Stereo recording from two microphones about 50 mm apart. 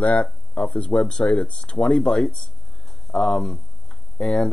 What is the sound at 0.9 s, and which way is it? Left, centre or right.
Speech, centre.